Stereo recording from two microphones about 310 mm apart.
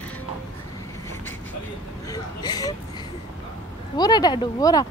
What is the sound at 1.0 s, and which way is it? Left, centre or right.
Vehicle, centre.